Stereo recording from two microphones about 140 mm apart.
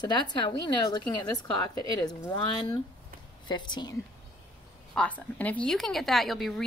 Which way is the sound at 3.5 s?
30° left (ahead or behind).